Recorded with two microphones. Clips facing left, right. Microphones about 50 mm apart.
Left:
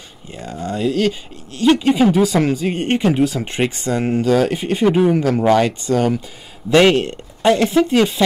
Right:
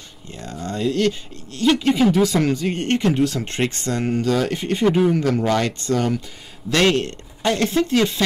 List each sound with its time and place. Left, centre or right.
0.3 s speech: centre